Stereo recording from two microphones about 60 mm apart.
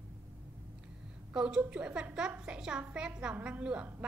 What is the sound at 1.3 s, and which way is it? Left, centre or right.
A woman's voice, centre.